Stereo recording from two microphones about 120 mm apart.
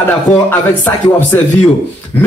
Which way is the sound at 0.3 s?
85° left.